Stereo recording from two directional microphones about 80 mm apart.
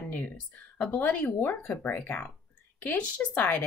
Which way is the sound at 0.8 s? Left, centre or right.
Centre.